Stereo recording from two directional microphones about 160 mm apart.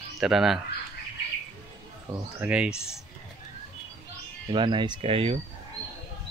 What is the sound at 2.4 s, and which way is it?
Speech, 5° right (ahead or behind).